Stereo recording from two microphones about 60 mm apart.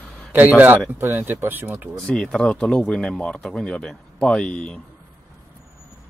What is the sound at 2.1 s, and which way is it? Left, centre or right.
Speech, centre.